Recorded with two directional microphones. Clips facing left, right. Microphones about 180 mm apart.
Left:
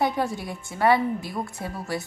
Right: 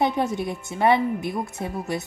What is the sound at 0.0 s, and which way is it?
Speech, 20° right (ahead or behind).